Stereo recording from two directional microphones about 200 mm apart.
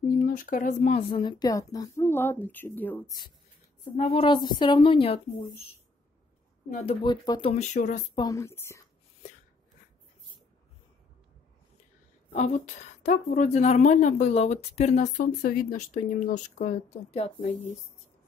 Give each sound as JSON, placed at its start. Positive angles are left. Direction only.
{"t": 0.2, "sound": "speech", "side_deg": 45}
{"t": 3.9, "sound": "a woman's voice", "side_deg": 30}
{"t": 6.9, "sound": "a woman's voice", "side_deg": 25}
{"t": 7.5, "sound": "a woman's voice", "side_deg": 35}
{"t": 8.2, "sound": "speech", "side_deg": 15}
{"t": 12.3, "sound": "a woman's voice", "side_deg": 35}